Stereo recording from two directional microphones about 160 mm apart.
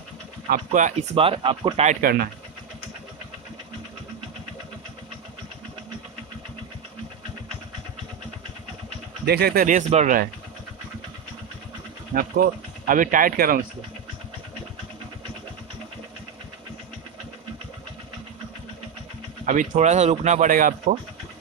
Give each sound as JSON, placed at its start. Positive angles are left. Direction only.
{"t": 0.5, "sound": "speech", "side_deg": -55}
{"t": 1.1, "sound": "speech", "side_deg": -35}
{"t": 2.0, "sound": "speech", "side_deg": -65}
{"t": 9.2, "sound": "speech", "side_deg": -85}
{"t": 12.2, "sound": "speech", "side_deg": -60}
{"t": 19.4, "sound": "speech", "side_deg": -55}